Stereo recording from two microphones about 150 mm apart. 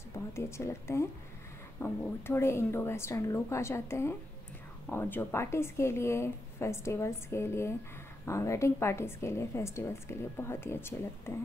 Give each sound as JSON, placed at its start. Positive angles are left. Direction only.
{"t": 0.1, "sound": "a woman's voice", "side_deg": 20}